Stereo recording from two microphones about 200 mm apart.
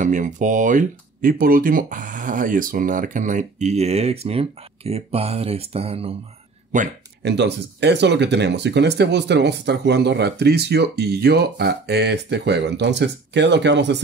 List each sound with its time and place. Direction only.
0.0 s speech: 40° right (ahead or behind)
7.2 s speech: 60° right (ahead or behind)